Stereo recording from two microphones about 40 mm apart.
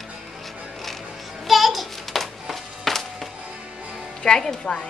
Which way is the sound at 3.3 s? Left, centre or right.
Right.